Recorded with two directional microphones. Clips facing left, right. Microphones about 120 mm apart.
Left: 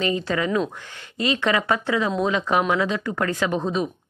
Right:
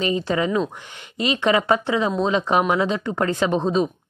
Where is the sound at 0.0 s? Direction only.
20° right (ahead or behind).